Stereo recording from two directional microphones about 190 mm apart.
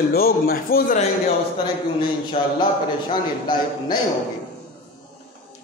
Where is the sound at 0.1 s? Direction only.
50° left (ahead or behind).